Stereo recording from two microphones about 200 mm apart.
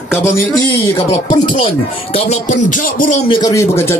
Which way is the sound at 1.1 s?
25° left (ahead or behind).